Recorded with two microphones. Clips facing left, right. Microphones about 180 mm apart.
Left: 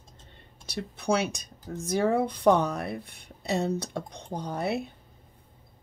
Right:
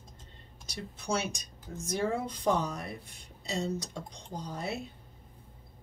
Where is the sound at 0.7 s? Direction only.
65° left (ahead or behind).